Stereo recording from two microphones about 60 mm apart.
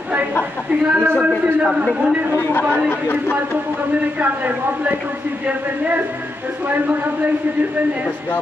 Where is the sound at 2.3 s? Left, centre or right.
Left.